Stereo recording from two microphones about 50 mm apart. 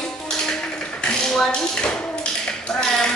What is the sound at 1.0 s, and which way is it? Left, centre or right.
Tap, centre.